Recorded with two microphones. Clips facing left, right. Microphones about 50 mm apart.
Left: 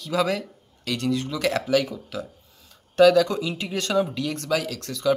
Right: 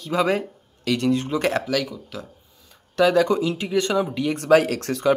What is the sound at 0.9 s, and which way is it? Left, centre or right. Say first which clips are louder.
Speech: right 4 dB; right.